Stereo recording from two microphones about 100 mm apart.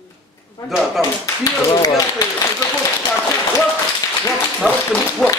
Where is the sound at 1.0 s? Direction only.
40° left (ahead or behind).